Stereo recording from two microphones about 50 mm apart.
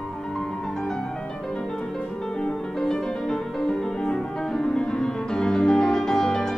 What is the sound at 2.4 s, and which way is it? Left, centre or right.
Music, centre.